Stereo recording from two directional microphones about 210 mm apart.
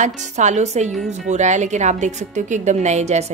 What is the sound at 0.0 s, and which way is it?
A woman's voice, 35° right (ahead or behind).